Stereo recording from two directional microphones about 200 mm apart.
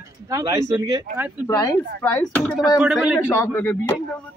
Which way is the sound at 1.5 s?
20° left (ahead or behind).